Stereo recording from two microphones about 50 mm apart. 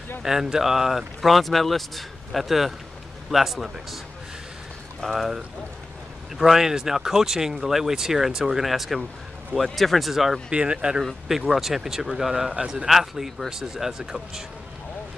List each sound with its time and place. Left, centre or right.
0.2 s speech: centre
5.0 s speech: centre
10.5 s speech: centre
11.2 s speech: centre